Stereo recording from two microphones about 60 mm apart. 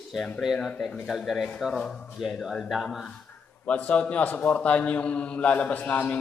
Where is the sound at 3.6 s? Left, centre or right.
Left.